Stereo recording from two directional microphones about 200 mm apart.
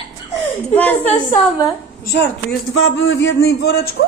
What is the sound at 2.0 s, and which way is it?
A man's voice, 55° left (ahead or behind).